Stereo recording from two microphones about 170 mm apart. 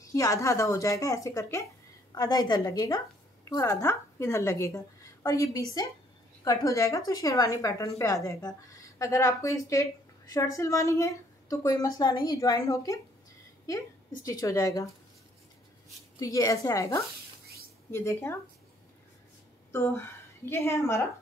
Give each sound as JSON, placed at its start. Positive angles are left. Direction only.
{"t": 0.0, "sound": "a woman's voice", "side_deg": 20}
{"t": 16.2, "sound": "a woman's voice", "side_deg": 20}
{"t": 19.7, "sound": "a woman's voice", "side_deg": 15}